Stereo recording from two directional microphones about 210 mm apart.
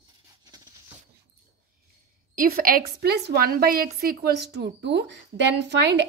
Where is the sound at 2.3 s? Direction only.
40° right (ahead or behind).